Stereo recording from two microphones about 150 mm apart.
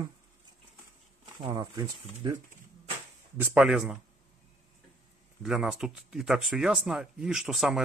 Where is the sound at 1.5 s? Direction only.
20° right (ahead or behind).